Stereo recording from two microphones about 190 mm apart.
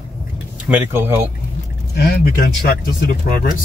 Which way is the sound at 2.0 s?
55° left (ahead or behind).